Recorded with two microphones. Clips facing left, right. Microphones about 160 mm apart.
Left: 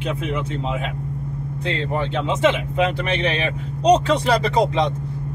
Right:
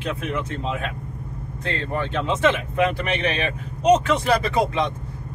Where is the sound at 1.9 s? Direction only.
20° left (ahead or behind).